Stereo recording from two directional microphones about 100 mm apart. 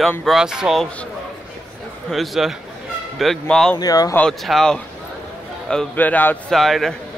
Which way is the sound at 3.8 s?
40° left (ahead or behind).